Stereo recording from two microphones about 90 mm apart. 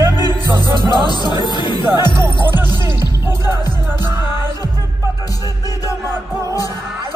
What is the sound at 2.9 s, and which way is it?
Music, 50° left (ahead or behind).